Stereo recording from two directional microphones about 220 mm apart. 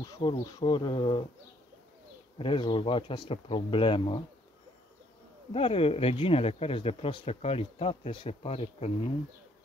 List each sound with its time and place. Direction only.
0.0 s speech: 20° left (ahead or behind)
2.3 s speech: 25° left (ahead or behind)
5.5 s speech: 25° left (ahead or behind)